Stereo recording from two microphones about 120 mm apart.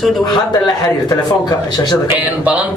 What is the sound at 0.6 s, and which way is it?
A man's voice, 35° left (ahead or behind).